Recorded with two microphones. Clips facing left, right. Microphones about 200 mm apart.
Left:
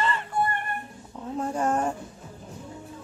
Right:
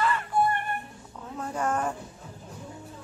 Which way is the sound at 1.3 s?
30° left (ahead or behind).